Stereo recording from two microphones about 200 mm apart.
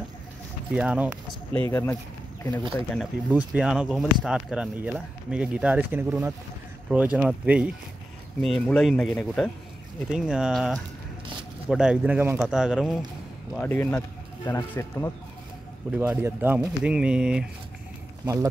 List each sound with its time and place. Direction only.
0.7 s speech: 5° right (ahead or behind)
1.7 s speech: 10° left (ahead or behind)
13.6 s speech: 10° left (ahead or behind)
15.9 s speech: 10° right (ahead or behind)
18.2 s speech: 15° right (ahead or behind)